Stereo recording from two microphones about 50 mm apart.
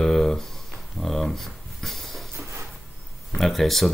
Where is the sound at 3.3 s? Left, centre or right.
Centre.